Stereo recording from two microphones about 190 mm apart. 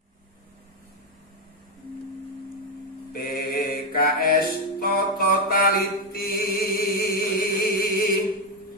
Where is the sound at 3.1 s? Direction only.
50° left (ahead or behind).